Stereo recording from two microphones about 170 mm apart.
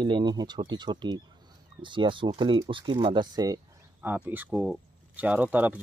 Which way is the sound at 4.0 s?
10° right (ahead or behind).